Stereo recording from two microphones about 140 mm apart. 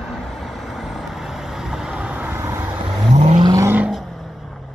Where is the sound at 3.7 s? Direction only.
5° right (ahead or behind).